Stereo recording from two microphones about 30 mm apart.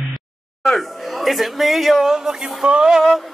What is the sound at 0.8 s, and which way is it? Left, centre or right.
A man's voice, centre.